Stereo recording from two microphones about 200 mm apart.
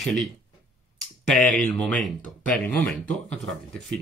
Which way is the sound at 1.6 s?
Centre (ahead or behind).